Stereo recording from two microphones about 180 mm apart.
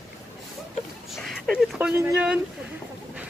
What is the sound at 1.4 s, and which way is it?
Speech, 5° right (ahead or behind).